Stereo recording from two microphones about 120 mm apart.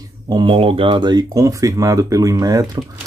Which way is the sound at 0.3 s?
40° right (ahead or behind).